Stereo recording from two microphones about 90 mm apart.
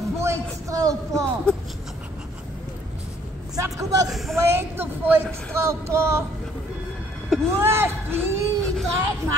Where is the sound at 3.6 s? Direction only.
35° right (ahead or behind).